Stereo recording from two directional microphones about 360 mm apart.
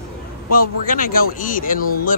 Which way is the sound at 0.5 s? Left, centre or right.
Left.